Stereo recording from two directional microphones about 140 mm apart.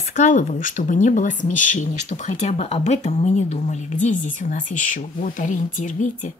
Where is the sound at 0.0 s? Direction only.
65° left (ahead or behind).